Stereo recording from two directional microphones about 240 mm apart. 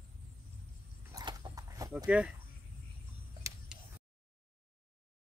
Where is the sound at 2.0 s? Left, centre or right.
Centre.